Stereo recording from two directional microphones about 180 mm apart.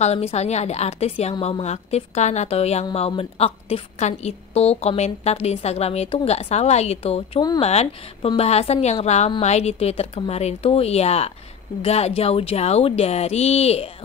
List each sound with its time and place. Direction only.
0.0 s a woman's voice: 35° left (ahead or behind)